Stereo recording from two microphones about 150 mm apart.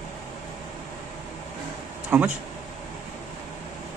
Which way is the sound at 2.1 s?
15° right (ahead or behind).